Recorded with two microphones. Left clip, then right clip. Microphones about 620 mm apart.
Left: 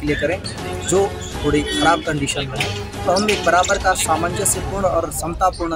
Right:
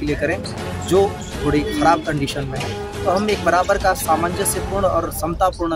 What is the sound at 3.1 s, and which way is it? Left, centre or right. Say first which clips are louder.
Speech: left 2 dB; right.